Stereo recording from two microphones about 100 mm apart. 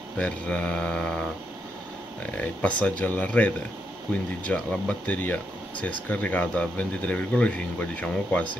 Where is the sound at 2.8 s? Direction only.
15° left (ahead or behind).